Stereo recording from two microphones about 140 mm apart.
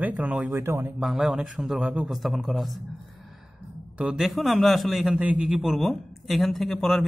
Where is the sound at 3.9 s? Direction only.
5° right (ahead or behind).